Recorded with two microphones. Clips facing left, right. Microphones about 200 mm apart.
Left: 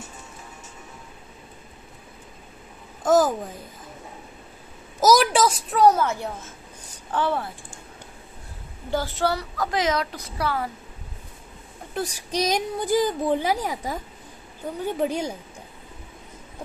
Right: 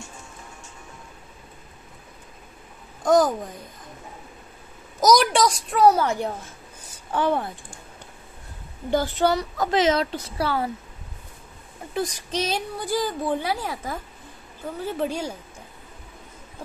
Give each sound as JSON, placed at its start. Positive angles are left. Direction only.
{"t": 3.0, "sound": "a woman's voice", "side_deg": 5}
{"t": 5.0, "sound": "a child's voice", "side_deg": 5}
{"t": 8.9, "sound": "speech", "side_deg": -15}
{"t": 11.9, "sound": "a woman's voice", "side_deg": 10}